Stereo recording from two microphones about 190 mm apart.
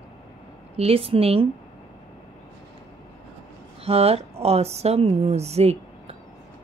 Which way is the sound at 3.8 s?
30° right (ahead or behind).